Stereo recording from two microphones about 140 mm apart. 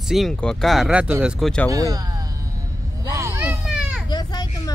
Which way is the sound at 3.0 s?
20° right (ahead or behind).